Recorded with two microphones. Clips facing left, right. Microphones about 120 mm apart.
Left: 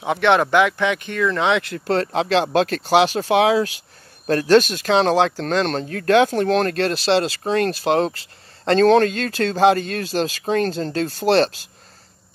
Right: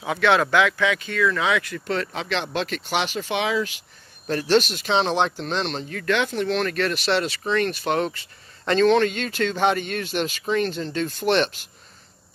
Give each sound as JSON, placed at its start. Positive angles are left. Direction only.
{"t": 0.0, "sound": "speech", "side_deg": 20}
{"t": 1.2, "sound": "speech", "side_deg": 30}